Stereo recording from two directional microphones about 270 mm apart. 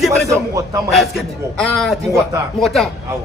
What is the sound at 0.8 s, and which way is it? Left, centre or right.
Speech, centre.